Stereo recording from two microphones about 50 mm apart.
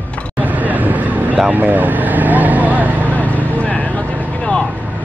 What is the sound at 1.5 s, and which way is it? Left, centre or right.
Vehicle, right.